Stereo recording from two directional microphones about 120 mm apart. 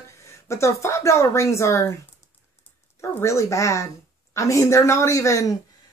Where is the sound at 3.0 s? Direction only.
25° left (ahead or behind).